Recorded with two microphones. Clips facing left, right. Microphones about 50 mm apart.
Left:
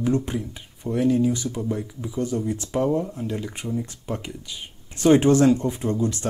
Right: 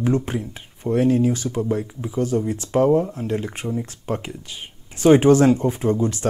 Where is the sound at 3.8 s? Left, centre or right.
Right.